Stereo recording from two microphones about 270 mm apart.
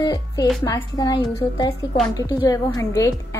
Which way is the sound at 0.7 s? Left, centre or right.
Centre.